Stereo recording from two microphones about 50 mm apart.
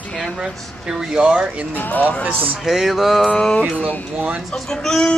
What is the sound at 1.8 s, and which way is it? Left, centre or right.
Music, left.